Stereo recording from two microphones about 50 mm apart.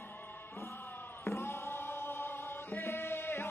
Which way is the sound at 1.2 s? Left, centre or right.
Left.